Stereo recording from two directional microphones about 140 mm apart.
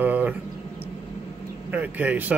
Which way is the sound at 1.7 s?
10° right (ahead or behind).